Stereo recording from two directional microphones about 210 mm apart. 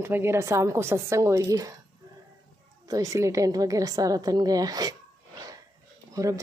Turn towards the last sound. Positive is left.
turn(degrees=-15)  # may be behind; listen again after turning